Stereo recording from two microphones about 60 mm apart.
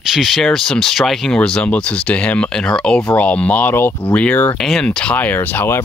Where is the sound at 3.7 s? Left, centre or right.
Left.